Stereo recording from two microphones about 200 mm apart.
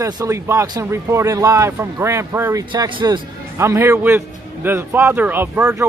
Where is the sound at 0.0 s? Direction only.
15° right (ahead or behind).